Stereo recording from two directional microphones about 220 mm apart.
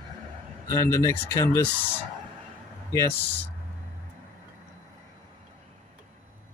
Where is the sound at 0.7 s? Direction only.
15° left (ahead or behind).